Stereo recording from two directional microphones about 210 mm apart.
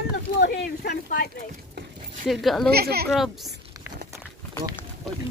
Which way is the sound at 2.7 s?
50° right (ahead or behind).